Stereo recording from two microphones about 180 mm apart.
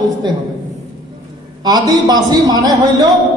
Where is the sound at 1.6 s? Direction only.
25° right (ahead or behind).